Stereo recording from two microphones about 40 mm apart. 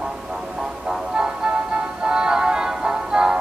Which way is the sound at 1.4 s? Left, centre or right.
Centre.